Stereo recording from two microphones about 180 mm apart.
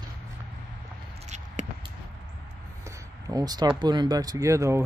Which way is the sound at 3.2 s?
20° right (ahead or behind).